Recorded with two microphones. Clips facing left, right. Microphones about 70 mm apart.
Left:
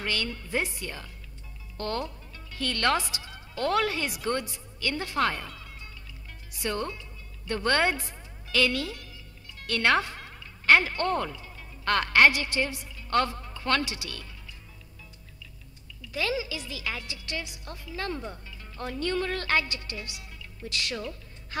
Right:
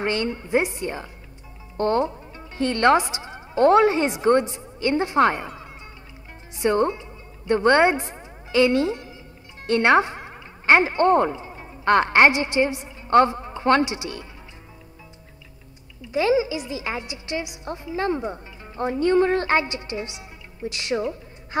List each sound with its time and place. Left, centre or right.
0.0 s a woman's voice: right
16.0 s a woman's voice: right